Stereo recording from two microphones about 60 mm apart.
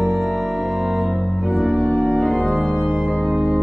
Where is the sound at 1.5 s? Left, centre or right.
Right.